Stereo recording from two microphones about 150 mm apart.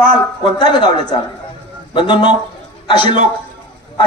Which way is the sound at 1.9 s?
30° left (ahead or behind).